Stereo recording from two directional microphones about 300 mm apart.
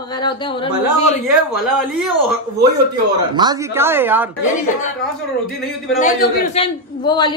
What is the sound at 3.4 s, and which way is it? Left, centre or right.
Speech, centre.